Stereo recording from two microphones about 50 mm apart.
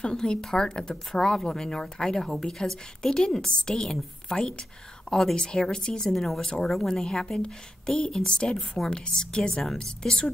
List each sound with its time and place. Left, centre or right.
0.0 s speech: centre
6.0 s speech: centre
8.5 s speech: centre
8.9 s speech: centre
9.6 s speech: centre